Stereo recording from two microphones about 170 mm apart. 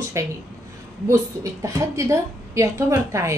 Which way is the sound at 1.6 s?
20° right (ahead or behind).